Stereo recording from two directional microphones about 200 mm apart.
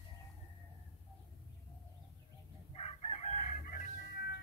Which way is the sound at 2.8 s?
30° left (ahead or behind).